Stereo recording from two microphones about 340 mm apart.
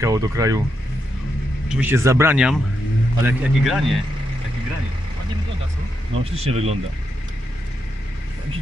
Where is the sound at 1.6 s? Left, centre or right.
Centre.